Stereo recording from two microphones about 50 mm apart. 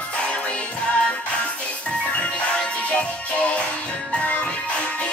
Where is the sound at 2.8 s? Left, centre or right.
Left.